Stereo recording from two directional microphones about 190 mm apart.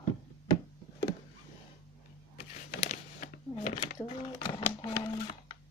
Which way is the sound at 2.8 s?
40° left (ahead or behind).